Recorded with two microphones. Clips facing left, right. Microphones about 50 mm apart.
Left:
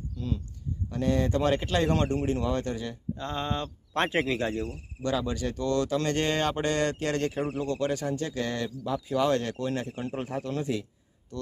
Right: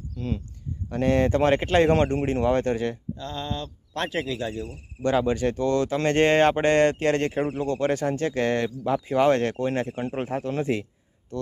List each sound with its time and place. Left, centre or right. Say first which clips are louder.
0.8 s speech: right 5 dB; right
3.2 s speech: even; left
5.0 s speech: right 7 dB; right